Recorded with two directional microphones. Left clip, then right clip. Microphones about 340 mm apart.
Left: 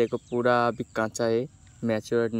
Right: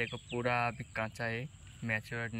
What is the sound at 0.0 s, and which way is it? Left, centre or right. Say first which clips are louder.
Speech: left 11 dB; left.